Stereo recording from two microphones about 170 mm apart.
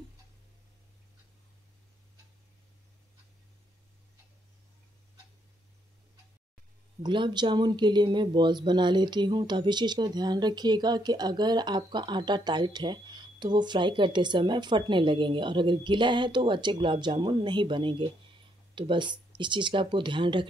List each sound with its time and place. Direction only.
7.0 s speech: 25° right (ahead or behind)